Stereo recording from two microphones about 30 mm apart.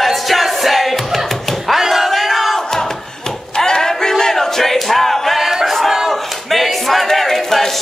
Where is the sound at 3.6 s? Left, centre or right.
Centre.